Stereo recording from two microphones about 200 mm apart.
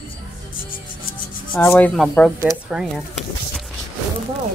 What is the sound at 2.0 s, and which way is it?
Speech, centre (ahead or behind).